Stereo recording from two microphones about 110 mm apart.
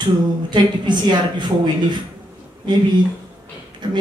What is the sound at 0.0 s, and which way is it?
Speech, 45° right (ahead or behind).